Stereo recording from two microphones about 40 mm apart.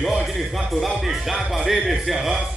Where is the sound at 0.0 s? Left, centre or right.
Centre.